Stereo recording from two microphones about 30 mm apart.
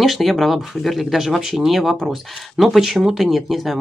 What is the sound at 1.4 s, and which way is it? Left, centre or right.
Speech, centre.